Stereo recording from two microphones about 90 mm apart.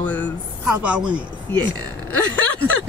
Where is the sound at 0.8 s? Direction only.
15° right (ahead or behind).